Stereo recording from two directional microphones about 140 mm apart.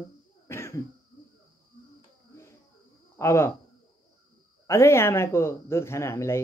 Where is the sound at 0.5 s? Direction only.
20° left (ahead or behind).